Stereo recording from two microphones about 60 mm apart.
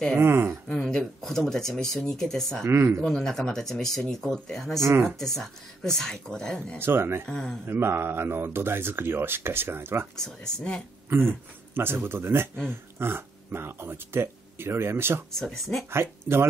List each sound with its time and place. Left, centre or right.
0.1 s speech: right
0.7 s speech: centre
2.6 s speech: right
3.0 s speech: centre
4.7 s speech: right
5.2 s speech: centre
6.8 s speech: right
7.2 s speech: centre
7.6 s speech: right
10.1 s speech: centre
11.1 s speech: right
15.3 s speech: centre
15.9 s speech: right